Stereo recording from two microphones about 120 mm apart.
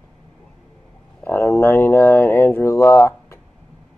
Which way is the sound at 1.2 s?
20° left (ahead or behind).